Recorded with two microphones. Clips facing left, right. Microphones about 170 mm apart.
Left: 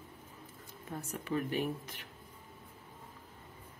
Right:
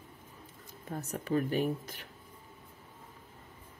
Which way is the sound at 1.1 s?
40° right (ahead or behind).